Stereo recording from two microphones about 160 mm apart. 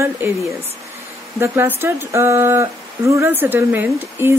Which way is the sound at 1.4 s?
15° right (ahead or behind).